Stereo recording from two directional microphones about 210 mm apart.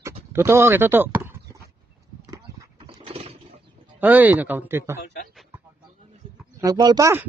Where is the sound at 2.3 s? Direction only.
20° right (ahead or behind).